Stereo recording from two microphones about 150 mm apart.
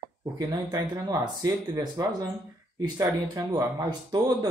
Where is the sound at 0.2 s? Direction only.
25° right (ahead or behind).